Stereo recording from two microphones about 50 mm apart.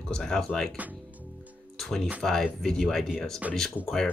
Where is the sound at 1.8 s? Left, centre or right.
Centre.